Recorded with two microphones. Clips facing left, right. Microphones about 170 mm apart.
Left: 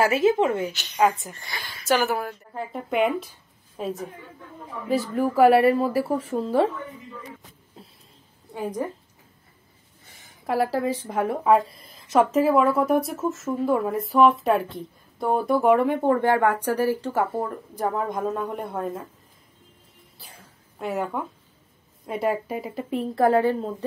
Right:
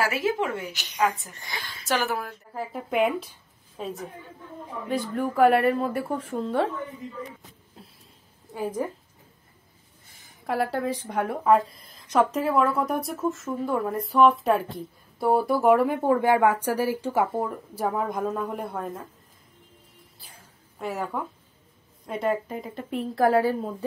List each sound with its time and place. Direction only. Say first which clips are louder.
0.0 s speech: left 6 dB; 20° left (ahead or behind)
1.5 s speech: right 1 dB; 20° right (ahead or behind)
1.9 s a woman's voice: left 4 dB; 5° left (ahead or behind)
8.5 s speech: even; 5° right (ahead or behind)
10.4 s a woman's voice: left 3 dB; centre (ahead or behind)
20.8 s a woman's voice: left 3 dB; centre (ahead or behind)